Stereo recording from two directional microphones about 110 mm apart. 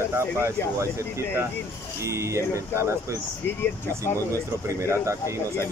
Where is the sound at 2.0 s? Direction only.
25° right (ahead or behind).